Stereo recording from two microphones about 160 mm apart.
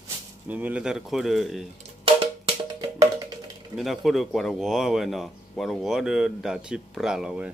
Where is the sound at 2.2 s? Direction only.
35° right (ahead or behind).